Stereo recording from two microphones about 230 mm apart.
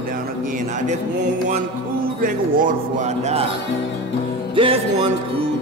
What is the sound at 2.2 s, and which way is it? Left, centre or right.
Speech, right.